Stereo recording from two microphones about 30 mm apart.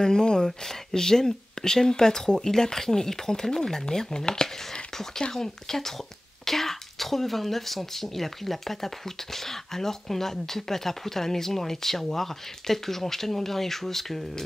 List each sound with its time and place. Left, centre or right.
0.0 s speech: left
5.3 s speech: centre